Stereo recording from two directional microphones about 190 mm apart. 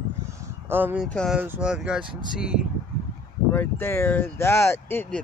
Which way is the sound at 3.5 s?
10° left (ahead or behind).